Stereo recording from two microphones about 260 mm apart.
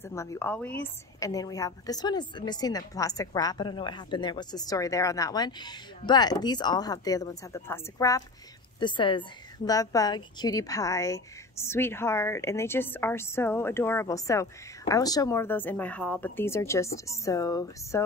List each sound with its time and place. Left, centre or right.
0.0 s a woman's voice: centre